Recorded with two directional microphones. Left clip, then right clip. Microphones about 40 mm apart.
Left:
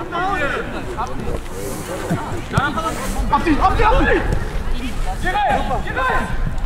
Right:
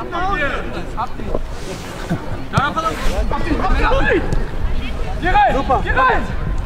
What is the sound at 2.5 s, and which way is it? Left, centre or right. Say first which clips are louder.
Speech: right 3 dB; right.